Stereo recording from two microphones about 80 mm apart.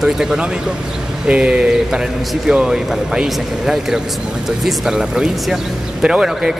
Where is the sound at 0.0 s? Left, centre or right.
Centre.